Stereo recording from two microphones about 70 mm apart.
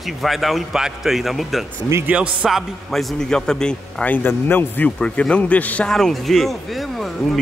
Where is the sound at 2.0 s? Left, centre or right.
Centre.